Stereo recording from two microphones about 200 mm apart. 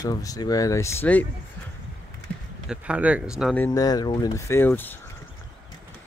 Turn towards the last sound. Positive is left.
turn(degrees=10)  # may be behind; listen again after turning